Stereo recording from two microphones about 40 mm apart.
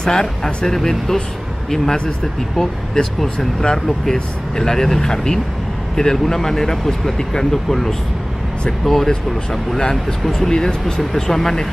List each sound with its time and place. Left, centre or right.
0.0 s speech: centre
3.8 s speech: centre
9.8 s speech: centre
10.2 s speech: centre
10.6 s speech: centre